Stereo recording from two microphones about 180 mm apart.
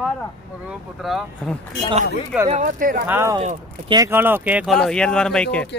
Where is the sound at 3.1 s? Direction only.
15° right (ahead or behind).